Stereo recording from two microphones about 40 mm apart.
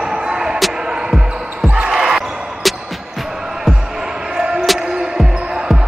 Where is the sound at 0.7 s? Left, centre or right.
Centre.